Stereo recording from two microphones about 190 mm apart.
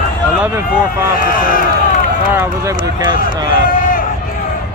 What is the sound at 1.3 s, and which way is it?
Speech, 50° left (ahead or behind).